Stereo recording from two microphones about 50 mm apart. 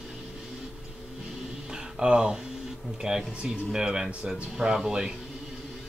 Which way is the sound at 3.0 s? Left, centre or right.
Centre.